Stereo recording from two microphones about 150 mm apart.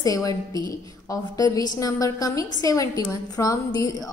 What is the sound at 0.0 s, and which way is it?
A woman's voice, 25° left (ahead or behind).